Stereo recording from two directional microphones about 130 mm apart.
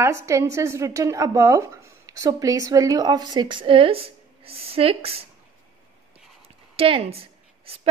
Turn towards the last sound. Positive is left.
turn(degrees=-50)  # may be behind; listen again after turning